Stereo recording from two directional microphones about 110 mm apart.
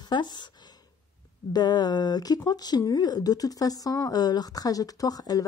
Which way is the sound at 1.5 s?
40° left (ahead or behind).